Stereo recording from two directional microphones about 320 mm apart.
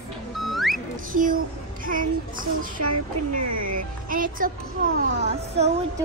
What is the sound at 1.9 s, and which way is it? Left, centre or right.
Speech, right.